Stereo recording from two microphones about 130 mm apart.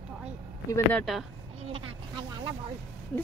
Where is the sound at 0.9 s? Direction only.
Centre (ahead or behind).